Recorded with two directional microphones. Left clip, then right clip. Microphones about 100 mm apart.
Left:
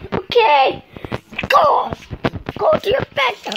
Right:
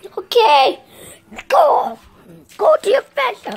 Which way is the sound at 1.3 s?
65° right (ahead or behind).